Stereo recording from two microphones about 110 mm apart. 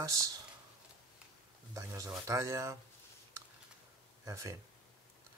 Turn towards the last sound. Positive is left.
turn(degrees=-30)  # may be behind; listen again after turning